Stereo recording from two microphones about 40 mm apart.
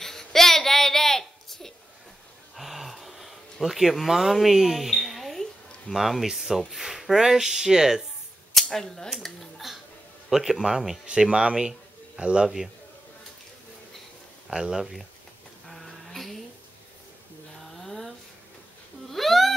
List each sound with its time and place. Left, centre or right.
0.0 s a sound: centre
2.5 s gasp: centre
3.6 s speech: centre
4.1 s a sound: centre
5.9 s speech: centre
8.5 s speech: centre
9.2 s dishes: centre
10.3 s speech: centre
11.1 s speech: right
14.5 s speech: centre
15.7 s a sound: centre
17.8 s a sound: centre